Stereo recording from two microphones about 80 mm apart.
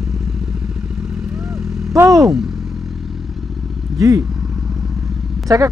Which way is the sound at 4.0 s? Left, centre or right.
Right.